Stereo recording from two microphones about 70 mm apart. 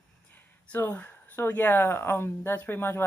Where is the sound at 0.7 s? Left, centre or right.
Left.